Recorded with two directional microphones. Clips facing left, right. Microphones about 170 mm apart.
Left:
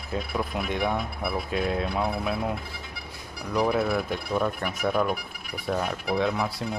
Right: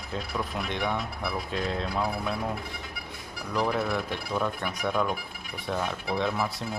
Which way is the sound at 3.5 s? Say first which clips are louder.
Left 3 dB; 10° left (ahead or behind).